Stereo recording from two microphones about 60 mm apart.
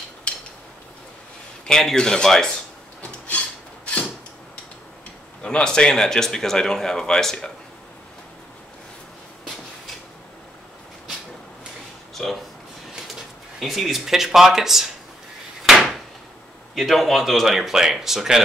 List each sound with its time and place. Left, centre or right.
0.3 s a sound: centre
1.7 s speech: centre
3.0 s filing: centre
5.4 s speech: centre
12.2 s speech: centre
13.6 s speech: centre
15.6 s a sound: centre
16.7 s speech: centre